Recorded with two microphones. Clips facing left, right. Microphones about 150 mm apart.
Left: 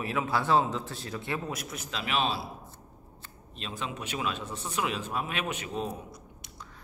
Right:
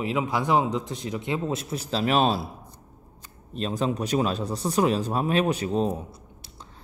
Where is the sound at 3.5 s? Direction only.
40° right (ahead or behind).